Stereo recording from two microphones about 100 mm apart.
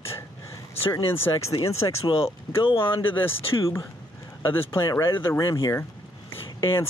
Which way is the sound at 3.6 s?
30° left (ahead or behind).